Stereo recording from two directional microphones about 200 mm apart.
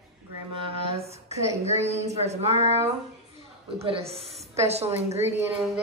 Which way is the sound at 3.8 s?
30° right (ahead or behind).